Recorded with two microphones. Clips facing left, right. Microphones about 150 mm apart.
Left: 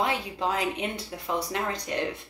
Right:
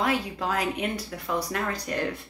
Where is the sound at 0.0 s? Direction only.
25° left (ahead or behind).